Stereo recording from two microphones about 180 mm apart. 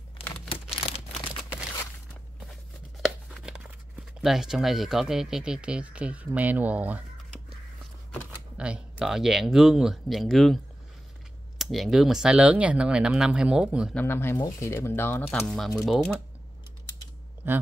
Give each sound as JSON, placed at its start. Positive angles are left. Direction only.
{"t": 0.5, "sound": "a sound", "side_deg": 35}
{"t": 3.0, "sound": "tearing", "side_deg": 0}
{"t": 4.2, "sound": "speech", "side_deg": 0}
{"t": 8.3, "sound": "speech", "side_deg": -5}
{"t": 13.9, "sound": "speech", "side_deg": 15}
{"t": 17.4, "sound": "speech", "side_deg": -10}